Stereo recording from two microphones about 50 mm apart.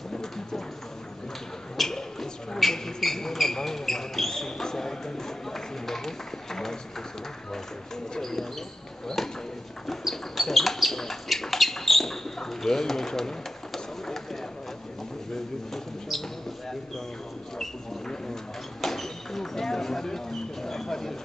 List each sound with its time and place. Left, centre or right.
1.8 s speech: centre
8.1 s speech: centre
9.8 s bird: centre
18.0 s a sound: centre